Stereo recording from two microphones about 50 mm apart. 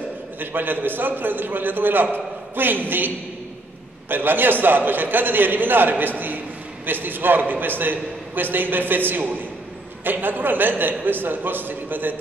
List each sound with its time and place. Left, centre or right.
0.4 s a man's voice: right
4.1 s a man's voice: right